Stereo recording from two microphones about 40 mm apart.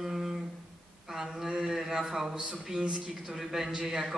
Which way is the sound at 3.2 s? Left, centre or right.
Centre.